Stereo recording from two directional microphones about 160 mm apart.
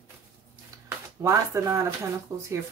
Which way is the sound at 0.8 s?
20° right (ahead or behind).